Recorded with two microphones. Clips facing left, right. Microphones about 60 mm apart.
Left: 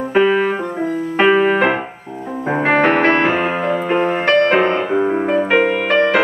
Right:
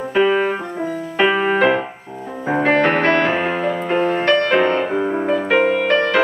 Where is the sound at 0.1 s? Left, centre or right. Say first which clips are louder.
Left 2 dB; centre.